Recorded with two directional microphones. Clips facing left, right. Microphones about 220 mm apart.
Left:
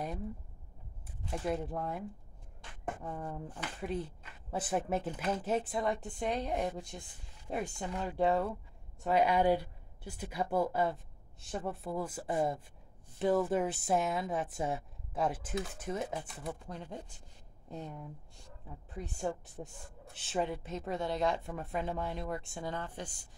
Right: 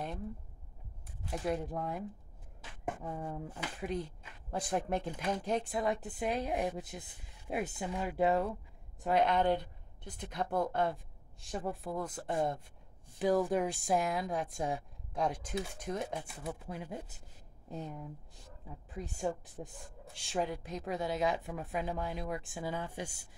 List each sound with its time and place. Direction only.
1.2 s a woman's voice: centre (ahead or behind)
3.9 s a woman's voice: 5° left (ahead or behind)